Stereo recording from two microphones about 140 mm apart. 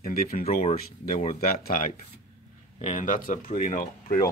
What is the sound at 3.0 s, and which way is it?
Speech, 65° left (ahead or behind).